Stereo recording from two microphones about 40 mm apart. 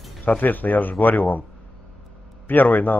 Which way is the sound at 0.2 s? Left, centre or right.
Left.